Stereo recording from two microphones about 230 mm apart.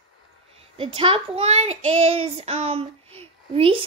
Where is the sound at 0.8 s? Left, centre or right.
Right.